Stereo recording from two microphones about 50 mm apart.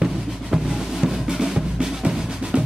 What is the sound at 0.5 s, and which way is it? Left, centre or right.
Drum, centre.